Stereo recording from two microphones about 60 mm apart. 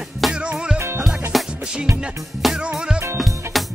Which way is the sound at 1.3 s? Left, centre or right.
Centre.